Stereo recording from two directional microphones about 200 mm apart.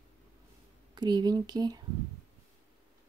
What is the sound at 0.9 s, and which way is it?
Speech, 20° right (ahead or behind).